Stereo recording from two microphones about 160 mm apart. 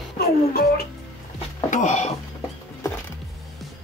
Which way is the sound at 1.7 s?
50° left (ahead or behind).